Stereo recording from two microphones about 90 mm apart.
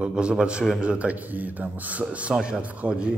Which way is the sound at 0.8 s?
15° right (ahead or behind).